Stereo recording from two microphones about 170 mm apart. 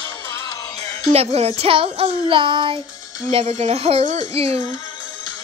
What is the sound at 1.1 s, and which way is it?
Female singing, 35° right (ahead or behind).